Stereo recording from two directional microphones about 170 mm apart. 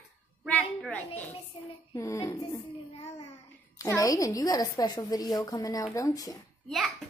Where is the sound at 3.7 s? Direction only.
20° left (ahead or behind).